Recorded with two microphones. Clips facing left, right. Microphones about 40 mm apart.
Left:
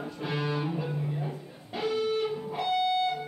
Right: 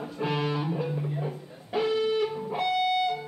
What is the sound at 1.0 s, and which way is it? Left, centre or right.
Music, centre.